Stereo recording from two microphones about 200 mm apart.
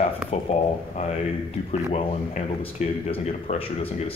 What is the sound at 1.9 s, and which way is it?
Speech, 35° left (ahead or behind).